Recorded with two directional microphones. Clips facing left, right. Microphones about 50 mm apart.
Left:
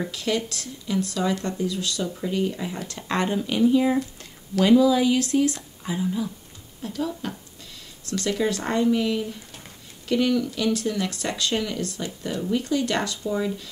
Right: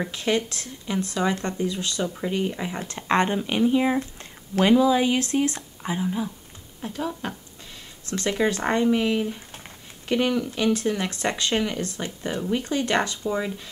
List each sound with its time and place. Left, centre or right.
0.1 s speech: right